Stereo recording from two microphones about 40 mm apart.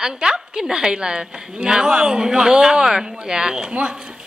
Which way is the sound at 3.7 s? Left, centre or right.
Right.